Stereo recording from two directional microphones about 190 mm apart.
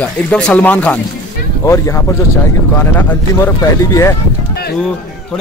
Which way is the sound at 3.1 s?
10° left (ahead or behind).